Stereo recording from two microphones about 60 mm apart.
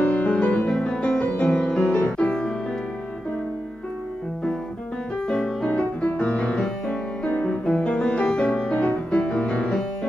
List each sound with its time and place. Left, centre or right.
0.0 s music: left
5.3 s music: centre